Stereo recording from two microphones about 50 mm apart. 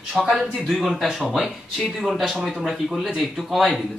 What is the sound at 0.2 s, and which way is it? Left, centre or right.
Speech, centre.